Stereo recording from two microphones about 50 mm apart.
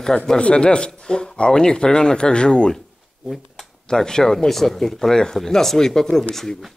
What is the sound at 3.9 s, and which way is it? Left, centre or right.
Speech, centre.